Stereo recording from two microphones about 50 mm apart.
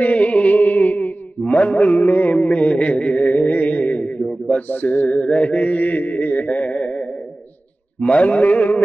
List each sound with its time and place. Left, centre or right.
0.0 s music: left
4.2 s a sound: centre
4.6 s mantra: left